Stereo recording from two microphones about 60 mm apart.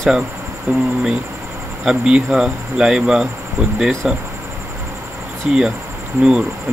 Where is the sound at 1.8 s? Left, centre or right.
Centre.